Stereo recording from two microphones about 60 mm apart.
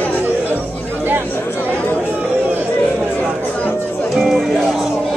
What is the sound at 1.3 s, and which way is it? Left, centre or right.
Chatter, left.